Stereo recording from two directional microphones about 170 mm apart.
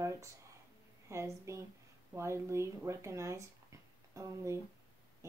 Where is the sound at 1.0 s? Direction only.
15° right (ahead or behind).